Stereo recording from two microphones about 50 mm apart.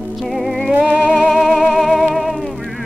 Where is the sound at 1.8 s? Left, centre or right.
Centre.